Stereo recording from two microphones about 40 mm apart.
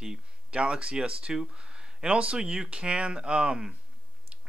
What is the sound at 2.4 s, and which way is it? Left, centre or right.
Speech, right.